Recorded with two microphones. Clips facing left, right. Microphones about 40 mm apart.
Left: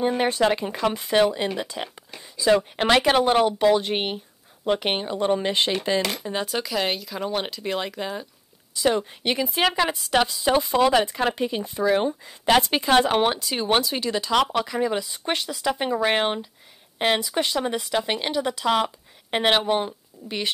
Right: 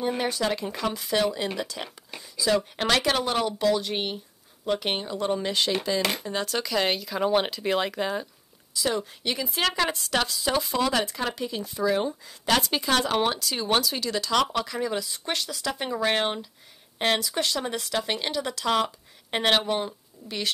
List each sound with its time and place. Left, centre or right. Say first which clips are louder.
0.2 s speech: left 6 dB; left
6.2 s speech: left 2 dB; centre
8.8 s speech: left 5 dB; left
9.5 s speech: left 2 dB; centre